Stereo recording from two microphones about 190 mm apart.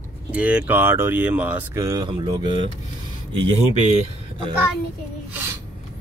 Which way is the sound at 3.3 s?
35° right (ahead or behind).